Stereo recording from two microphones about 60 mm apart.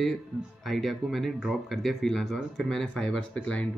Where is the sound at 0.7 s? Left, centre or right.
Centre.